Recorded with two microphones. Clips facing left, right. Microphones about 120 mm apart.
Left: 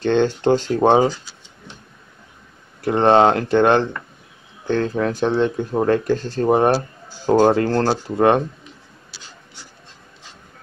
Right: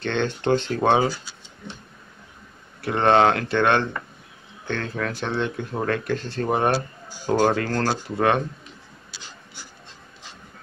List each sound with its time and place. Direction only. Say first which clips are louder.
0.0 s speech: left 7 dB; 30° left (ahead or behind)
2.8 s speech: left 4 dB; 30° left (ahead or behind)